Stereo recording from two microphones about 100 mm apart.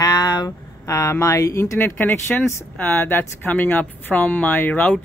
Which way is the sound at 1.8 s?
20° left (ahead or behind).